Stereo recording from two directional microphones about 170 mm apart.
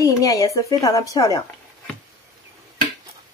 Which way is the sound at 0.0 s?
20° left (ahead or behind).